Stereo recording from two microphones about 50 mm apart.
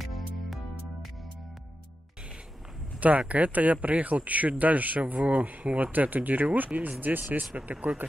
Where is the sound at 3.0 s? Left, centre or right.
Right.